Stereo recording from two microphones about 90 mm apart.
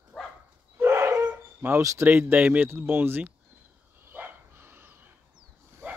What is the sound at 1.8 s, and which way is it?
Speech, 35° right (ahead or behind).